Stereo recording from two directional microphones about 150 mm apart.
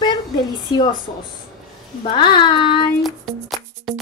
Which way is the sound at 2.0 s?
35° left (ahead or behind).